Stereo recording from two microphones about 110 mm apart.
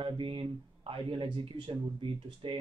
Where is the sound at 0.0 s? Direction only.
50° right (ahead or behind).